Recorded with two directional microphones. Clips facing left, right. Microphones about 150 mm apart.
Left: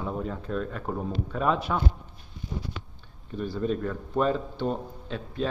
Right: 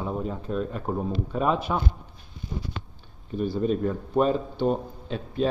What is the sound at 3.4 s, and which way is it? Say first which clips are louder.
Speech: right 4 dB; 15° right (ahead or behind).